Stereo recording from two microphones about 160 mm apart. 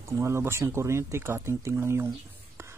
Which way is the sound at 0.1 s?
15° right (ahead or behind).